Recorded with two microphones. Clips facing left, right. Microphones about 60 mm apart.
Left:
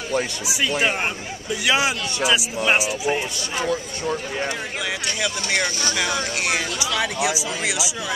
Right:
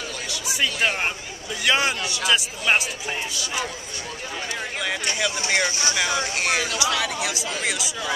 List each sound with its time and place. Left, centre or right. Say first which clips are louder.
0.5 s speech: even; centre
5.5 s speech: even; centre
7.0 s speech: left 3 dB; left
7.6 s speech: left 2 dB; centre